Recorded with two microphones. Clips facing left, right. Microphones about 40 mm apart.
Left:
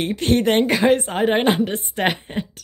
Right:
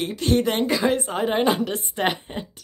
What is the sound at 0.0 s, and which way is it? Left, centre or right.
A woman's voice, left.